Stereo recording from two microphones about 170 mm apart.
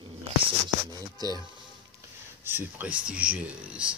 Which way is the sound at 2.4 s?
10° right (ahead or behind).